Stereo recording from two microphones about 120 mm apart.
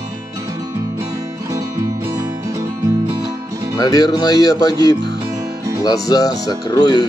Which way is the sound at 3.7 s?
30° left (ahead or behind).